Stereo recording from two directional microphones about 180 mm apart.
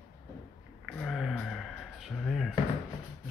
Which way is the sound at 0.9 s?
Centre (ahead or behind).